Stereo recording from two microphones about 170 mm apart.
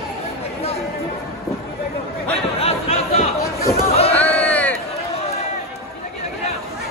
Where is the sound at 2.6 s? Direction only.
40° left (ahead or behind).